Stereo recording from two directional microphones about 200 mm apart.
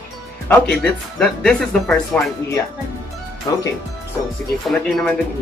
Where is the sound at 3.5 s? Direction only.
20° left (ahead or behind).